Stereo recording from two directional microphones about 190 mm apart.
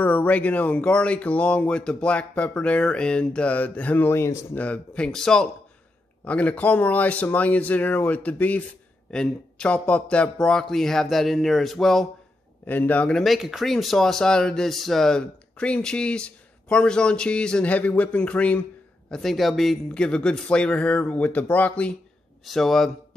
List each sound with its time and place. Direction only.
0.0 s speech: 10° left (ahead or behind)